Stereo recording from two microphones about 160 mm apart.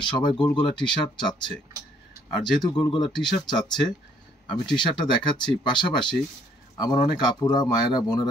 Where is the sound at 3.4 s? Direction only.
30° left (ahead or behind).